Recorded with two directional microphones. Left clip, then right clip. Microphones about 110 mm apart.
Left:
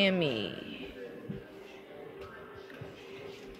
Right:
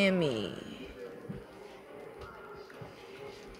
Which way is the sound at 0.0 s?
35° right (ahead or behind).